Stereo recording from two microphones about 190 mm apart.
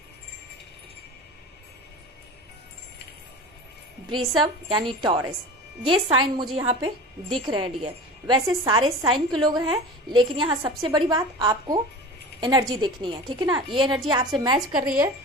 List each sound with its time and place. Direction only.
4.4 s a woman's voice: 25° right (ahead or behind)
14.8 s a woman's voice: 10° right (ahead or behind)